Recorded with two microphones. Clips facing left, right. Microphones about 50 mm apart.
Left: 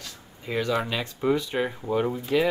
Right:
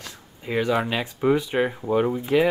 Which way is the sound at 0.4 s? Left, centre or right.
Centre.